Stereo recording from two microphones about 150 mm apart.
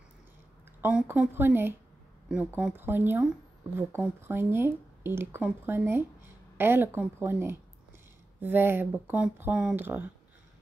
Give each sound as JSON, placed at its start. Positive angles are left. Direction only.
{"t": 0.7, "sound": "speech", "side_deg": -10}